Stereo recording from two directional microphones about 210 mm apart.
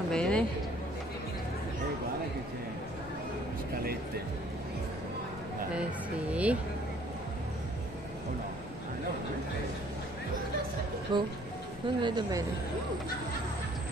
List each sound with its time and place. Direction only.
0.1 s a sound: 5° left (ahead or behind)
6.3 s vehicle: 5° right (ahead or behind)
11.1 s a woman's voice: 20° right (ahead or behind)